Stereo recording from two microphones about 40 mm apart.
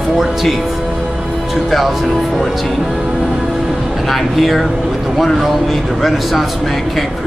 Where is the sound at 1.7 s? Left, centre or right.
Centre.